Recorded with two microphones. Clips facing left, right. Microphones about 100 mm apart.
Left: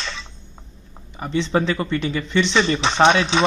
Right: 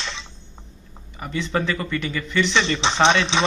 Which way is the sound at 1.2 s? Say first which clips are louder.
Left 4 dB; 25° left (ahead or behind).